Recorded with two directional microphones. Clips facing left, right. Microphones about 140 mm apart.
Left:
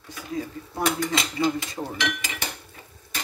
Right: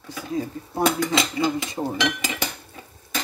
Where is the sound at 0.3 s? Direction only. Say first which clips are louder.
Right 3 dB; 30° right (ahead or behind).